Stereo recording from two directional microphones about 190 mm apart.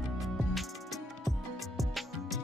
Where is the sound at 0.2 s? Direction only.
Centre (ahead or behind).